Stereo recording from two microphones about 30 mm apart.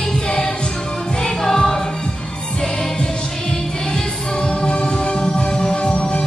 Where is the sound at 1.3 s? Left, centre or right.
Centre.